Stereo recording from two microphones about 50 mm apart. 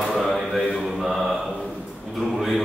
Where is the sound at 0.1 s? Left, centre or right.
Centre.